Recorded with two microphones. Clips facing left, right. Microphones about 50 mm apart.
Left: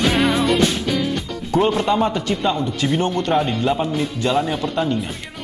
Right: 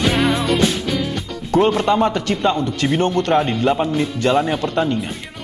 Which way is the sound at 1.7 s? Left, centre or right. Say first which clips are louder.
Right 2 dB; centre.